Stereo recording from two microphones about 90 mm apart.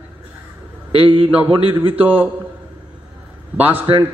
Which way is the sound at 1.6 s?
80° right.